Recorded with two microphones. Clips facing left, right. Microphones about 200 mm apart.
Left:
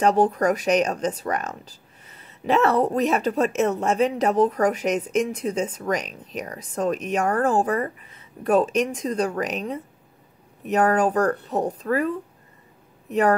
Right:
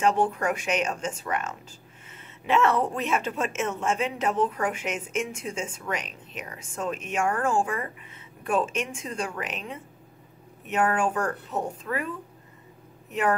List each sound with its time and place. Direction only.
0.0 s a woman's voice: 40° left (ahead or behind)